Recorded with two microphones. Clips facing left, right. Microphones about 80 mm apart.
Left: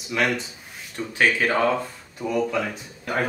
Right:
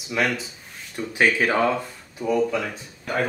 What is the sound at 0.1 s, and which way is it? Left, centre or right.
Speech, centre.